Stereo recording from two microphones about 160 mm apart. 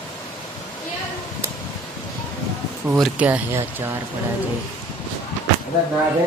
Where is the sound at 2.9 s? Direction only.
5° right (ahead or behind).